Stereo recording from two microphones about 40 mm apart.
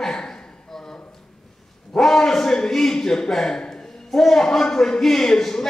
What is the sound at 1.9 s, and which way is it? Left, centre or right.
A man's voice, centre.